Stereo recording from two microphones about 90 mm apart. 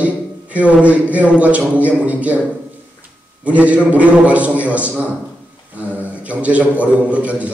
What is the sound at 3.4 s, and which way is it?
A man's voice, 15° right (ahead or behind).